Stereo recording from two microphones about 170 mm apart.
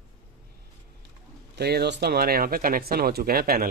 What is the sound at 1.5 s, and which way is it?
Speech, 70° right (ahead or behind).